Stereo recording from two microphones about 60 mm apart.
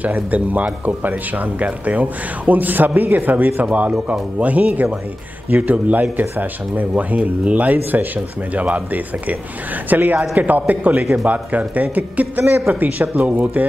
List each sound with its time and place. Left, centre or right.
0.0 s speech: right